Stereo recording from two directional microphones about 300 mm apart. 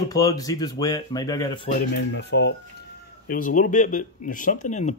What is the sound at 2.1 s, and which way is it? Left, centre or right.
Speech, left.